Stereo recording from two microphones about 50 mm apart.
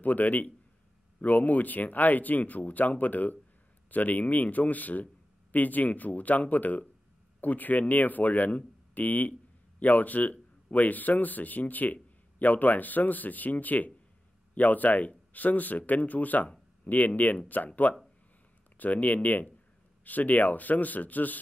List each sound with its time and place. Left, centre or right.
0.0 s speech: left